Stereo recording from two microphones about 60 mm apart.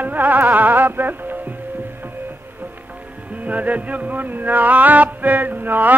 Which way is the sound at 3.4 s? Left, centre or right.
Right.